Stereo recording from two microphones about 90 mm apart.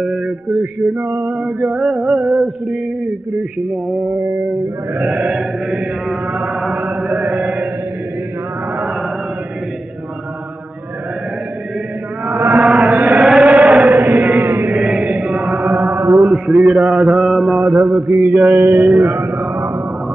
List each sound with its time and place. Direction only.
0.0 s male singing: centre (ahead or behind)
12.4 s chant: 30° right (ahead or behind)
12.6 s male singing: centre (ahead or behind)
13.2 s chant: centre (ahead or behind)
13.9 s chant: 35° right (ahead or behind)
14.7 s chant: 5° right (ahead or behind)
16.1 s mantra: centre (ahead or behind)
18.5 s a sound: 35° right (ahead or behind)
19.0 s speech: 40° right (ahead or behind)
19.3 s a sound: 5° right (ahead or behind)